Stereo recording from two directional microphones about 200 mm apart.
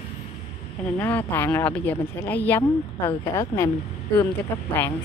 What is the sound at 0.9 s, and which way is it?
Speech, 10° left (ahead or behind).